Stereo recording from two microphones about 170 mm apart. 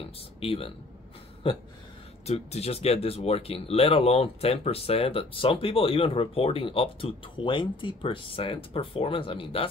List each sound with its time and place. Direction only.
0.4 s speech: 35° left (ahead or behind)